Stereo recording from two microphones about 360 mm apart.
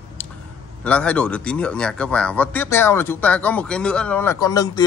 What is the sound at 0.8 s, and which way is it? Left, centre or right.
Speech, centre.